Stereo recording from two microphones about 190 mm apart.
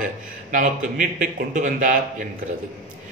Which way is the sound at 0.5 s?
45° right (ahead or behind).